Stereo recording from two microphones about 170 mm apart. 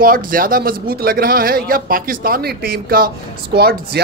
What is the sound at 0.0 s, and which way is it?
Speech, 55° right (ahead or behind).